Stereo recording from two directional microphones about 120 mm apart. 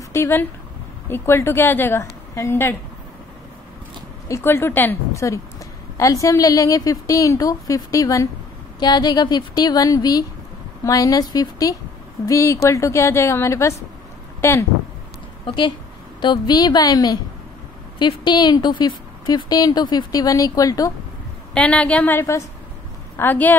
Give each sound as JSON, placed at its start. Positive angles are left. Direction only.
{"t": 0.1, "sound": "a woman's voice", "side_deg": 20}
{"t": 4.3, "sound": "a woman's voice", "side_deg": 20}
{"t": 15.4, "sound": "a woman's voice", "side_deg": 45}
{"t": 21.5, "sound": "a woman's voice", "side_deg": 10}